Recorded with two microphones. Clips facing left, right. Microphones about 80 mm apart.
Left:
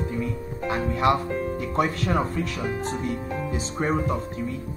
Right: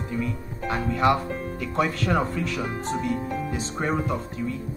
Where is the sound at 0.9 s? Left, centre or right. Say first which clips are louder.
Right 1 dB; left.